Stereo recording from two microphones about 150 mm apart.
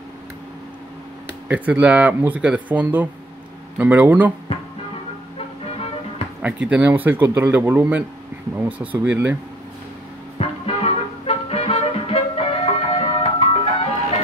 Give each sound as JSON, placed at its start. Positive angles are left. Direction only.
{"t": 1.5, "sound": "speech", "side_deg": -10}
{"t": 6.4, "sound": "speech", "side_deg": -10}
{"t": 10.4, "sound": "music", "side_deg": 45}